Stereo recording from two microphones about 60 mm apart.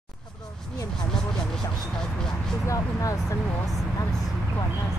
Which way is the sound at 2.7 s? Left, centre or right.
Left.